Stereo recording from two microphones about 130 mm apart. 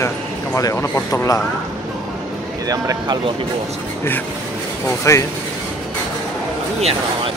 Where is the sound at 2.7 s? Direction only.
30° right (ahead or behind).